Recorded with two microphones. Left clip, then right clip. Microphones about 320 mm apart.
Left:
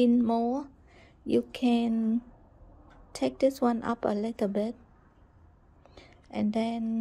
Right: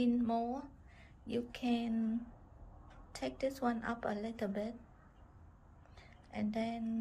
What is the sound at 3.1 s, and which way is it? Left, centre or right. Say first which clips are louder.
A woman's voice: left 12 dB; left.